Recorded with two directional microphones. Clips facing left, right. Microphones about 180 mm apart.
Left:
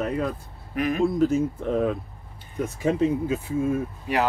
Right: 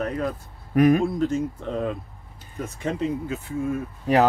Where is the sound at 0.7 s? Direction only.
45° right (ahead or behind).